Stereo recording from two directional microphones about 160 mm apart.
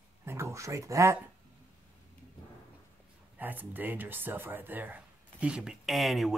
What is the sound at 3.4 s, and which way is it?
Speech, 10° right (ahead or behind).